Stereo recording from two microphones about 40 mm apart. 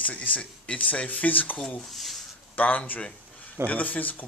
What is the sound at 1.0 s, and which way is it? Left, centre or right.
Stir, left.